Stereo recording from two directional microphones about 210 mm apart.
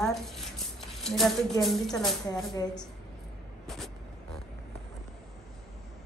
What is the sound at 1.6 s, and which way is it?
Speech, centre (ahead or behind).